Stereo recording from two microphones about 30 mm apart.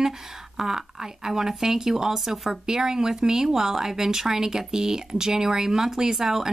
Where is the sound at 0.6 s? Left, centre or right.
Centre.